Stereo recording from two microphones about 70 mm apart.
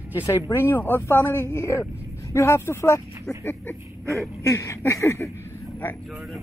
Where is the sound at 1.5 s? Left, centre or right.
Left.